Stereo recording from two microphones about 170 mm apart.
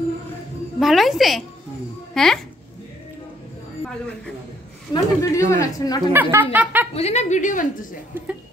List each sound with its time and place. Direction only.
0.7 s a woman's voice: centre (ahead or behind)
4.9 s speech: 20° left (ahead or behind)
6.1 s speech: 10° right (ahead or behind)
7.0 s a woman's voice: 40° left (ahead or behind)